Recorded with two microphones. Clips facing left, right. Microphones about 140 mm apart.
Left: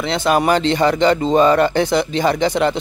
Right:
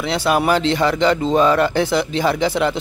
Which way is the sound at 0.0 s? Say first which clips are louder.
Left 1 dB; 5° right (ahead or behind).